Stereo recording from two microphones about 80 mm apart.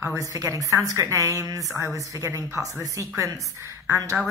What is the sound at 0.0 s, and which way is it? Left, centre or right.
A woman's voice, right.